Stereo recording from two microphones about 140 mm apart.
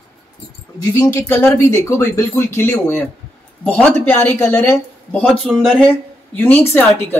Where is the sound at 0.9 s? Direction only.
15° left (ahead or behind).